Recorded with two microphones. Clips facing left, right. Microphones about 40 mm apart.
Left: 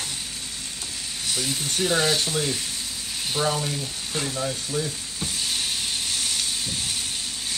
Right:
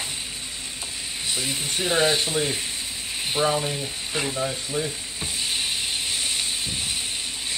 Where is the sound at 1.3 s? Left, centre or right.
Right.